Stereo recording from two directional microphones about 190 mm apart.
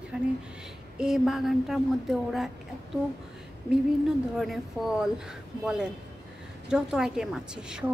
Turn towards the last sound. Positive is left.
turn(degrees=-5)  # may be behind; listen again after turning